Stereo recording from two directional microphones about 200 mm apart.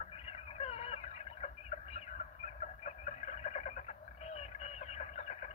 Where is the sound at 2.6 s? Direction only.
35° left (ahead or behind).